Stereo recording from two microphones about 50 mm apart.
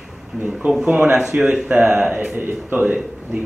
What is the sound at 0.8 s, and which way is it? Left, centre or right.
Speech, right.